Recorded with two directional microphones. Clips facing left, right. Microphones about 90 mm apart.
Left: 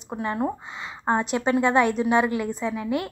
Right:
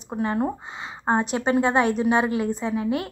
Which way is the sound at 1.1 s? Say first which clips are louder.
Right 1 dB; 25° right (ahead or behind).